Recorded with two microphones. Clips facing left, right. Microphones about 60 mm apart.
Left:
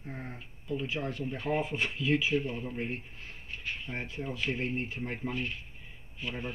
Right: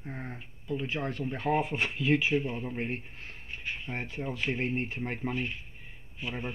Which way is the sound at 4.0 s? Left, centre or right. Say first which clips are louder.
Right 1 dB; right.